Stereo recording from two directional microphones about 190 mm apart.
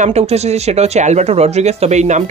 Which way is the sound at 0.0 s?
35° right (ahead or behind).